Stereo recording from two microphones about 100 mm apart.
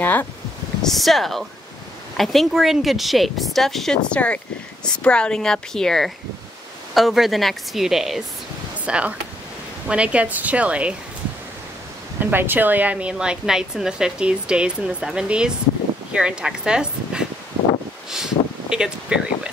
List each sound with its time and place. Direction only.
0.0 s speech: 20° left (ahead or behind)
0.8 s a woman's voice: centre (ahead or behind)
12.2 s a woman's voice: 20° right (ahead or behind)
18.1 s a sound: 5° right (ahead or behind)